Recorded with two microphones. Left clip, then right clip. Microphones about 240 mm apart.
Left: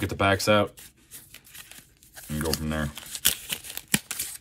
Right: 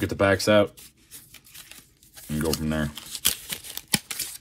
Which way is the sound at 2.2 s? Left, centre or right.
Centre.